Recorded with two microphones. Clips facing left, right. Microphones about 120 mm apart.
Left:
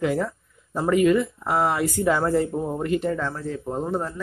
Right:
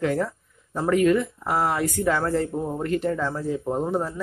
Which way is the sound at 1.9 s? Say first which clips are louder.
Left 2 dB; 15° left (ahead or behind).